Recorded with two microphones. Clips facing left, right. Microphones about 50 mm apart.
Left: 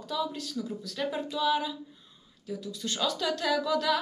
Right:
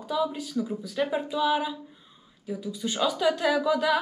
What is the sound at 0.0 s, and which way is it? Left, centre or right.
Speech, centre.